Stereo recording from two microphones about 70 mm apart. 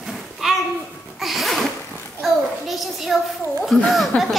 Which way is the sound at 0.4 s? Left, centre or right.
Centre.